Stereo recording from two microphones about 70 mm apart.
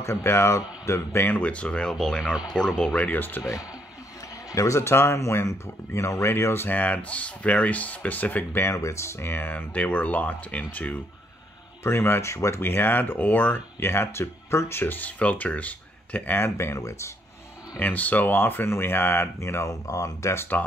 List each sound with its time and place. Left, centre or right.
0.0 s speech: left
1.3 s speech: centre
3.1 s speech: left
4.5 s speech: left
6.8 s speech: left
8.7 s speech: left
11.8 s speech: left
13.7 s speech: left
16.3 s speech: left
17.7 s speech: left